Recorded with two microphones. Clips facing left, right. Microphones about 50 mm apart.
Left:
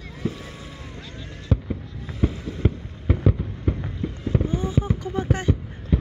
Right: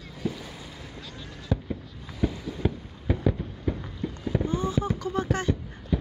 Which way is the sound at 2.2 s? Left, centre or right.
Left.